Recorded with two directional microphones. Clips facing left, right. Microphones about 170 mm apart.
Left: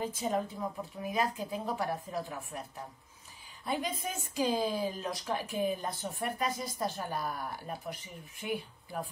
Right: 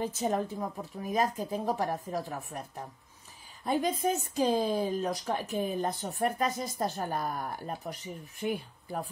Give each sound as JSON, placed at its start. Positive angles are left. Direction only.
{"t": 0.0, "sound": "speech", "side_deg": -45}
{"t": 3.6, "sound": "speech", "side_deg": -45}